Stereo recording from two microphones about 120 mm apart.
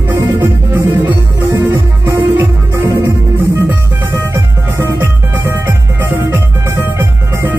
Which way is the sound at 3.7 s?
20° right (ahead or behind).